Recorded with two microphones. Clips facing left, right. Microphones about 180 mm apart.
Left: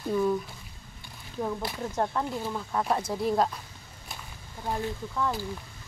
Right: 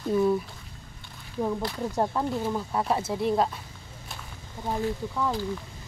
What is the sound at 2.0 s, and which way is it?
Speech, 15° right (ahead or behind).